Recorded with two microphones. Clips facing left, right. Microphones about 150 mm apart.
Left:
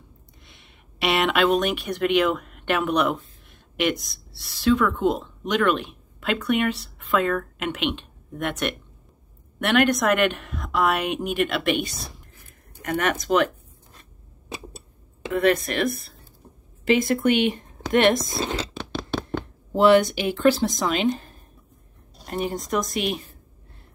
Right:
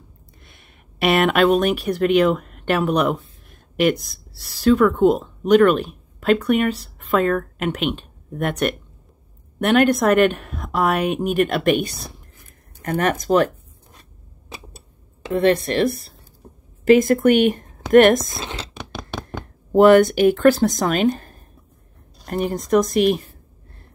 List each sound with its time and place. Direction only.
0.4 s a woman's voice: 50° right (ahead or behind)
11.0 s a woman's voice: 40° right (ahead or behind)
12.8 s a woman's voice: 35° right (ahead or behind)
15.2 s a woman's voice: 30° right (ahead or behind)
16.8 s a woman's voice: 45° right (ahead or behind)